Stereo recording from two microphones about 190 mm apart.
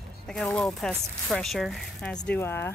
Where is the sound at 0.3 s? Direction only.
5° left (ahead or behind).